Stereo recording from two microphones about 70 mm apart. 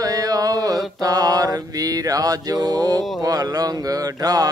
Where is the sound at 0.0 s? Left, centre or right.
Right.